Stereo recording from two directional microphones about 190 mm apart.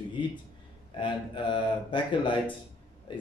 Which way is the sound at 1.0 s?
25° left (ahead or behind).